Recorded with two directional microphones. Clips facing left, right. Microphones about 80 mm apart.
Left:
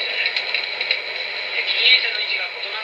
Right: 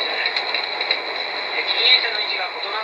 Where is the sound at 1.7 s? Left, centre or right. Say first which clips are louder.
Left 1 dB; right.